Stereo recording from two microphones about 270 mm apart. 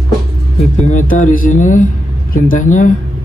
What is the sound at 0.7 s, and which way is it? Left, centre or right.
Speech, left.